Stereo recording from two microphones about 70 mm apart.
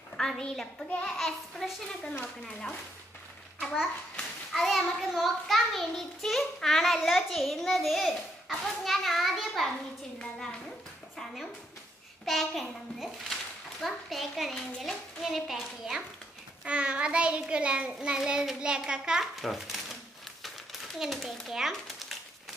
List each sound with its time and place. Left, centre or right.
0.2 s a woman's voice: centre
1.1 s a child's voice: centre
4.5 s a child's voice: centre
12.3 s a child's voice: centre
16.6 s child singing: centre
19.4 s typewriter: centre
21.0 s a child's voice: centre